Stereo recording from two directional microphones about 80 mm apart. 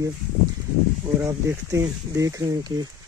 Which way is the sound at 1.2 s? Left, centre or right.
Right.